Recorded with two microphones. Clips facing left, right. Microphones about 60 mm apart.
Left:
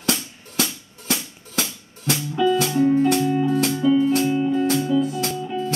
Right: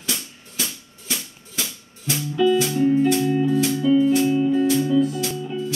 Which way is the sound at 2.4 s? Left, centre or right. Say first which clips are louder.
Even; left.